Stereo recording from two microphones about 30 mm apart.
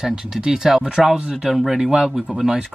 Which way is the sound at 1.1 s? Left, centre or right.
Right.